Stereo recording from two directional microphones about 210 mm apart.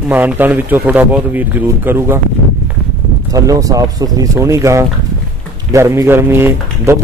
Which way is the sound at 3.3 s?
15° right (ahead or behind).